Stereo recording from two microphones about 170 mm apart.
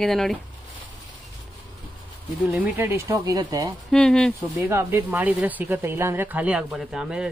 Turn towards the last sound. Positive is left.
turn(degrees=-5)  # may be behind; listen again after turning